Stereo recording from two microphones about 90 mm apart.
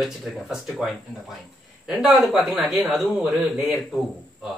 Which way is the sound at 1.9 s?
5° right (ahead or behind).